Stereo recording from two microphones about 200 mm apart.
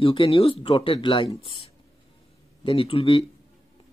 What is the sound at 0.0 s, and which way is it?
Speech, 25° left (ahead or behind).